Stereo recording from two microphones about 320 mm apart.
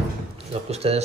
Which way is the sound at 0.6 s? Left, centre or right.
Centre.